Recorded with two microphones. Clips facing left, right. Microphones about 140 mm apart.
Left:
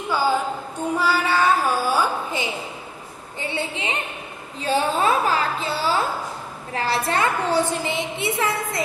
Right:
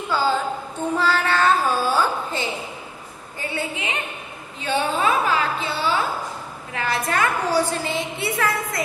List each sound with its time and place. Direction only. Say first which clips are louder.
0.1 s a woman's voice: even; 15° left (ahead or behind)
0.8 s a sound: even; 10° left (ahead or behind)
3.3 s a woman's voice: even; 25° left (ahead or behind)